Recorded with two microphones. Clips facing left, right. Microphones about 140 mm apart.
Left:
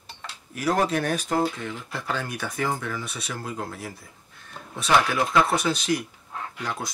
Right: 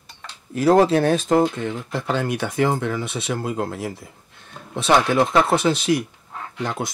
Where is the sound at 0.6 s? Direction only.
30° right (ahead or behind).